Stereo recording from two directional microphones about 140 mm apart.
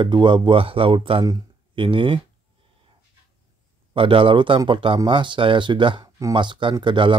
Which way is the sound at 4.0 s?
40° right (ahead or behind).